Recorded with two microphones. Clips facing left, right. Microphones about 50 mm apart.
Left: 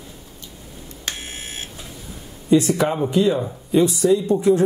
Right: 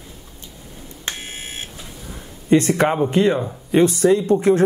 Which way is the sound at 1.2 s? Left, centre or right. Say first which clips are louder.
Right 1 dB; right.